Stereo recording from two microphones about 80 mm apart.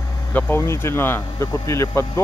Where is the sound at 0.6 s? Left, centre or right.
Left.